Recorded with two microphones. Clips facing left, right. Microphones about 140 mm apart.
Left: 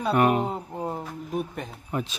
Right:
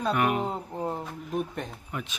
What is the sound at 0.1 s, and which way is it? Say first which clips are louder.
Speech: left 6 dB; 35° left (ahead or behind).